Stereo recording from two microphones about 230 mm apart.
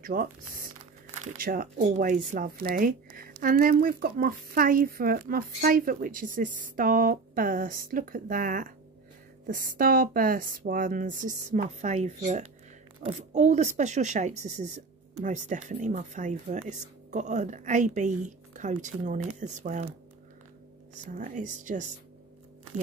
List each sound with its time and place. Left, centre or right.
0.0 s speech: right
21.1 s speech: right